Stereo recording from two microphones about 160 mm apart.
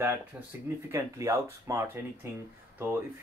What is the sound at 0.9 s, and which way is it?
Speech, 20° right (ahead or behind).